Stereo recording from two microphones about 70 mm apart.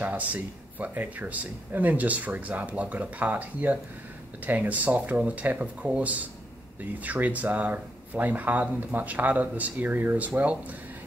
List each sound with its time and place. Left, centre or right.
0.0 s speech: right